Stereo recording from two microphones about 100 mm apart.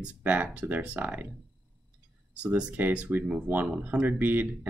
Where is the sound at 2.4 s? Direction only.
10° right (ahead or behind).